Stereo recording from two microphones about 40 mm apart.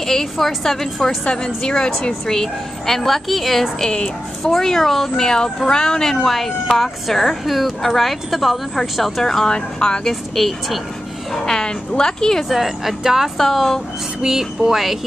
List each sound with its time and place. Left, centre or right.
0.0 s a woman's voice: centre
1.0 s speech: centre
3.8 s speech: left
4.6 s a woman's voice: centre
9.2 s speech: centre
10.0 s a woman's voice: centre
12.4 s speech: centre
13.4 s speech: centre
14.2 s speech: centre